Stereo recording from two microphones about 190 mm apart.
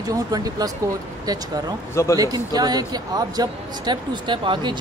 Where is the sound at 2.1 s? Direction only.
20° right (ahead or behind).